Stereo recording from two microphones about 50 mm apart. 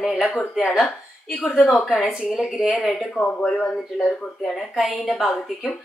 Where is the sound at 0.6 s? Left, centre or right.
Centre.